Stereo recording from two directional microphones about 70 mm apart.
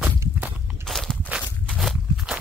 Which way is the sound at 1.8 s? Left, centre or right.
Centre.